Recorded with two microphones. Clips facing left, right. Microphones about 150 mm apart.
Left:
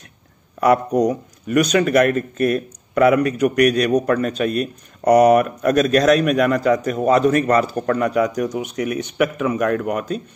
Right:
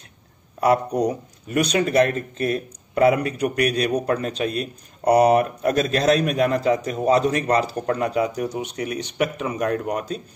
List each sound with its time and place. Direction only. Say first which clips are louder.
1.0 s speech: left 4 dB; 30° right (ahead or behind)